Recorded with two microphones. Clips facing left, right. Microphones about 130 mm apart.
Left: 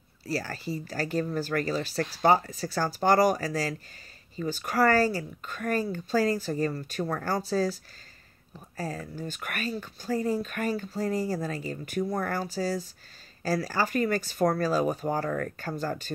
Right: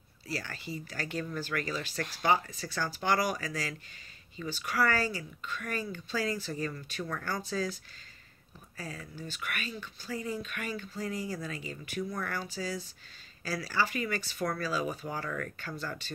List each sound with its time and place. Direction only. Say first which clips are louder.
0.3 s speech: left 7 dB; 40° left (ahead or behind)
8.7 s speech: left 8 dB; 40° left (ahead or behind)